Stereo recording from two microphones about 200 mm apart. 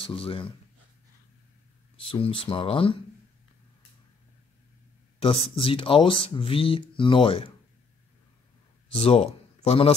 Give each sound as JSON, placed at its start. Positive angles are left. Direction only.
{"t": 0.0, "sound": "speech", "side_deg": 25}
{"t": 2.0, "sound": "speech", "side_deg": 30}
{"t": 5.2, "sound": "speech", "side_deg": 30}
{"t": 8.9, "sound": "a man's voice", "side_deg": 30}